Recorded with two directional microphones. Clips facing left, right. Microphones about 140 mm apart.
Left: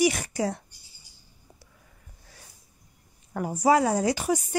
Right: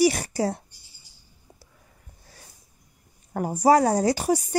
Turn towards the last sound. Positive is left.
turn(degrees=-40)  # may be behind; listen again after turning